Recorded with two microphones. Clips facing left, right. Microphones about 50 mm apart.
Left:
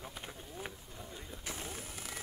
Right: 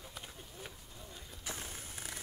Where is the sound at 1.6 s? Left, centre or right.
Centre.